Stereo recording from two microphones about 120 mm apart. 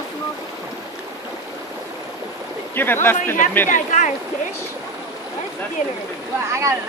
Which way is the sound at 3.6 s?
90° left.